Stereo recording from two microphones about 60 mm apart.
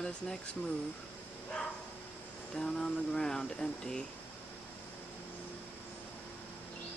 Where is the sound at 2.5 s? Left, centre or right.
Centre.